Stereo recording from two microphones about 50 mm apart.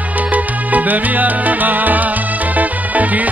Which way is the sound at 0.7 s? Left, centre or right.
Right.